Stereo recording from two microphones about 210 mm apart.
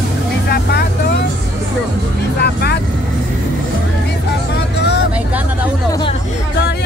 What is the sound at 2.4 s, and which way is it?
Speech, 50° left (ahead or behind).